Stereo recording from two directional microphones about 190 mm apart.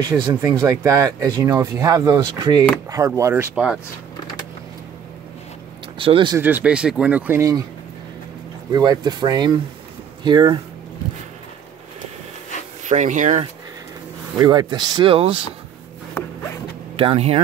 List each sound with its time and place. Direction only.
0.0 s speech: 20° right (ahead or behind)
5.9 s speech: 25° right (ahead or behind)
6.3 s speech: 10° right (ahead or behind)
8.7 s speech: 20° right (ahead or behind)
12.8 s speech: 40° right (ahead or behind)
14.4 s speech: 20° right (ahead or behind)
16.9 s speech: 30° right (ahead or behind)